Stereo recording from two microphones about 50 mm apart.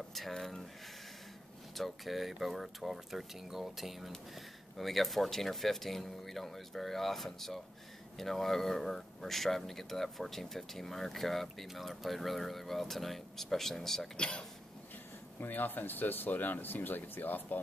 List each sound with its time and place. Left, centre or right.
0.3 s speech: centre
1.8 s speech: centre
14.1 s speech: centre
15.4 s speech: left